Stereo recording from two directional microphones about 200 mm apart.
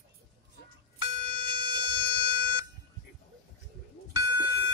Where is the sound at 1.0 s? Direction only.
25° right (ahead or behind).